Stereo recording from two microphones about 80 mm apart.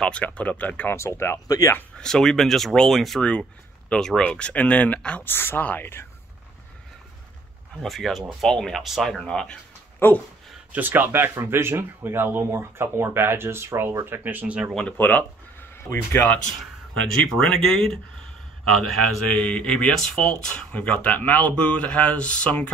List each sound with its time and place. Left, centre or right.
0.0 s speech: centre
0.9 s speech: left
2.0 s speech: centre
3.2 s speech: centre
7.8 s speech: centre
9.9 s speech: left
10.7 s speech: right
14.9 s speech: centre
15.9 s speech: left
17.4 s speech: centre